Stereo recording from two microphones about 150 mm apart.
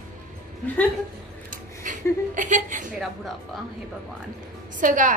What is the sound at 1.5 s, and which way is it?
Speech, 60° right (ahead or behind).